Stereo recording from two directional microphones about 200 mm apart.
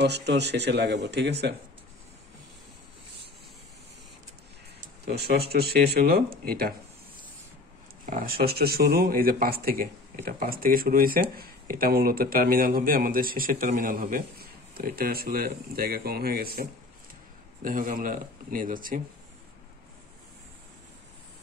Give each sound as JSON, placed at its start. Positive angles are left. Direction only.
{"t": 0.0, "sound": "speech", "side_deg": -60}
{"t": 5.0, "sound": "speech", "side_deg": -55}
{"t": 8.0, "sound": "speech", "side_deg": -45}